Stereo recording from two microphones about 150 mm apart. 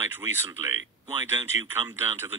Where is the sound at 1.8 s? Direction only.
35° right (ahead or behind).